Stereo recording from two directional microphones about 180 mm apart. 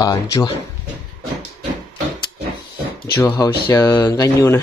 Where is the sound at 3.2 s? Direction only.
20° left (ahead or behind).